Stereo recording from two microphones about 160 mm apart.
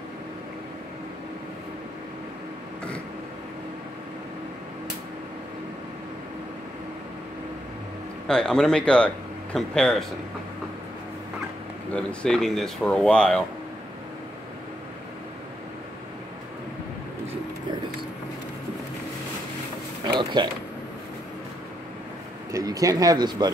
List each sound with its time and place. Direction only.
8.3 s speech: 5° left (ahead or behind)
11.9 s speech: 5° left (ahead or behind)
20.1 s a sound: 30° right (ahead or behind)
22.5 s speech: 20° right (ahead or behind)